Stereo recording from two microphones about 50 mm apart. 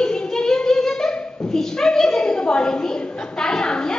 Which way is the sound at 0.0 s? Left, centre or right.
Centre.